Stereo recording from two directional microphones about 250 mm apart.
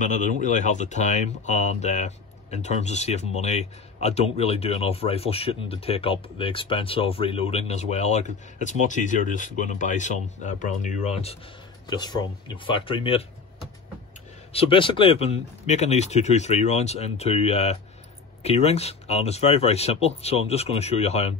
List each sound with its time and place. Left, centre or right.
0.0 s speech: left
14.5 s speech: left